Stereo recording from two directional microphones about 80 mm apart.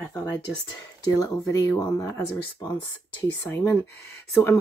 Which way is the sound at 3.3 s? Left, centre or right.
Left.